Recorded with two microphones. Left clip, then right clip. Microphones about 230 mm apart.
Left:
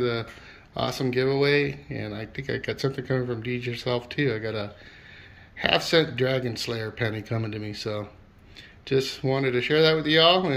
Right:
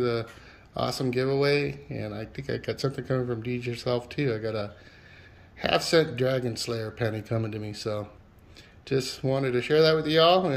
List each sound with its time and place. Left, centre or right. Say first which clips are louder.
0.0 s speech: left 1 dB; centre